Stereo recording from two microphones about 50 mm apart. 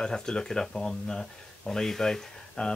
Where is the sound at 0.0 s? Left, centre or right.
Centre.